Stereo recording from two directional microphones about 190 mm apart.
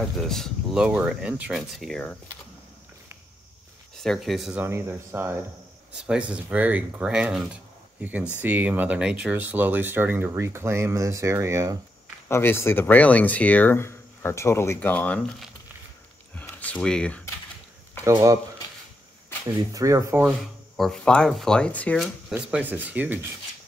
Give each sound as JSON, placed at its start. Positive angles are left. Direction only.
{"t": 0.2, "sound": "speech", "side_deg": 0}
{"t": 4.0, "sound": "speech", "side_deg": 0}
{"t": 12.3, "sound": "speech", "side_deg": 10}
{"t": 16.3, "sound": "a sound", "side_deg": 10}
{"t": 18.0, "sound": "speech", "side_deg": -15}
{"t": 19.7, "sound": "speech", "side_deg": -15}
{"t": 20.7, "sound": "speech", "side_deg": 0}
{"t": 22.0, "sound": "speech", "side_deg": -5}